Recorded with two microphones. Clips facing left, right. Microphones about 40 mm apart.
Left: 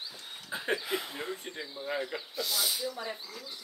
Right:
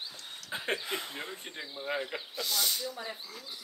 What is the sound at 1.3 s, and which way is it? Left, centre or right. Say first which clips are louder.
Speech: left 1 dB; right.